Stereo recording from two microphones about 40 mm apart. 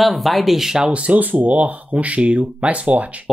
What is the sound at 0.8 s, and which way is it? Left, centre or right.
Speech, right.